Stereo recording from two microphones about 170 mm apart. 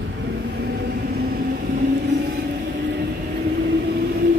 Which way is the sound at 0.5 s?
70° right (ahead or behind).